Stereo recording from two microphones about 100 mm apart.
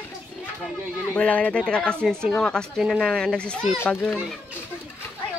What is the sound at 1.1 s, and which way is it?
Speech, 15° left (ahead or behind).